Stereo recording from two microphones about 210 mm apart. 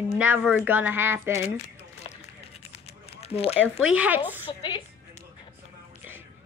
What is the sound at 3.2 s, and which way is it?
Speech, 30° left (ahead or behind).